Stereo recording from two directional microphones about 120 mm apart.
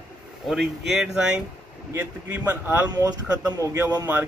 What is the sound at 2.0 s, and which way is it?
Speech, 15° right (ahead or behind).